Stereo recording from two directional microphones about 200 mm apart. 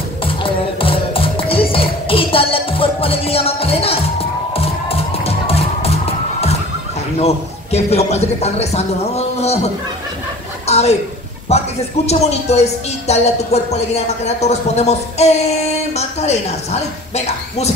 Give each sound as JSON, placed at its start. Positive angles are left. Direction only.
{"t": 0.2, "sound": "music", "side_deg": 25}
{"t": 7.2, "sound": "a woman's voice", "side_deg": 30}
{"t": 10.7, "sound": "a sound", "side_deg": 30}
{"t": 11.5, "sound": "a woman's voice", "side_deg": 30}